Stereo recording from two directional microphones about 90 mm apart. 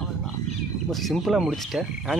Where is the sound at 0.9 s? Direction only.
Centre (ahead or behind).